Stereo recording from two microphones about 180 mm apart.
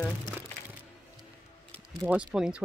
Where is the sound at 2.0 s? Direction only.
10° right (ahead or behind).